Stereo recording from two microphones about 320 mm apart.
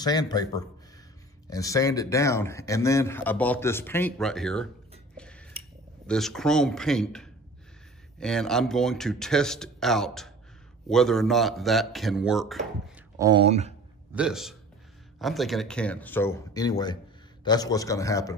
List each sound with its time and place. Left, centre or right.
0.0 s speech: centre
5.1 s a sound: centre
6.0 s a man's voice: centre
13.2 s speech: centre
14.1 s a man's voice: centre